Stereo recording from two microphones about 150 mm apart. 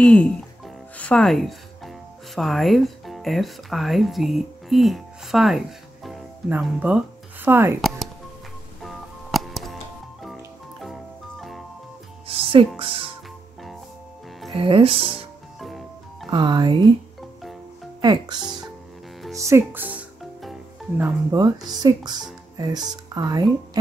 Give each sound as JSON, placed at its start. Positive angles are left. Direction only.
{"t": 0.0, "sound": "speech", "side_deg": 5}
{"t": 6.6, "sound": "speech", "side_deg": -10}
{"t": 8.8, "sound": "music", "side_deg": 0}
{"t": 10.8, "sound": "music", "side_deg": 0}
{"t": 12.3, "sound": "speech", "side_deg": -40}
{"t": 14.5, "sound": "speech", "side_deg": -35}
{"t": 15.6, "sound": "music", "side_deg": 0}
{"t": 16.3, "sound": "speech", "side_deg": -30}
{"t": 18.0, "sound": "speech", "side_deg": -30}
{"t": 21.3, "sound": "speech", "side_deg": -25}